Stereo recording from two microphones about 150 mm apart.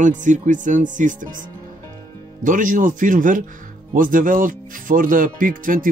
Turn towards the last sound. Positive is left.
turn(degrees=-65)  # may be behind; listen again after turning